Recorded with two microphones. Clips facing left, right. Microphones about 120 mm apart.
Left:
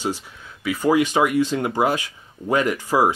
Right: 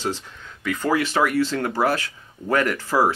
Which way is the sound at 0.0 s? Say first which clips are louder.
Left 1 dB; 10° left (ahead or behind).